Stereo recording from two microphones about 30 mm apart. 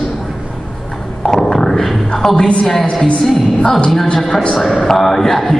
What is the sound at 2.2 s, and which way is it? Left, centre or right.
Speech, left.